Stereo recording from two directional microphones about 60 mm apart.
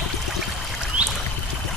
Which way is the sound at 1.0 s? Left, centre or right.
Centre.